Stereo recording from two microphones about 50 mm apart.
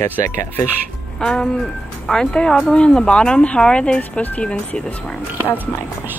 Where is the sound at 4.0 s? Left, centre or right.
Left.